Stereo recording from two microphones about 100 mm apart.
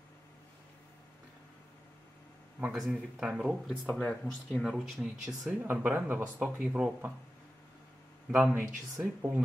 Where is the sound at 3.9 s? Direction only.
10° left (ahead or behind).